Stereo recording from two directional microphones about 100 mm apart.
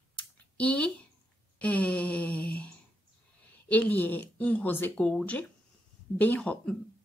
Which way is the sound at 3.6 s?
15° left (ahead or behind).